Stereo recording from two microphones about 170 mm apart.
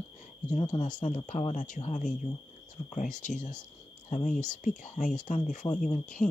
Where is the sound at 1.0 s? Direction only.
45° left (ahead or behind).